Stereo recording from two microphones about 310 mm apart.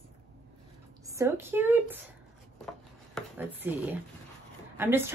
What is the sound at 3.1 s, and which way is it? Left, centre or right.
A woman's voice, centre.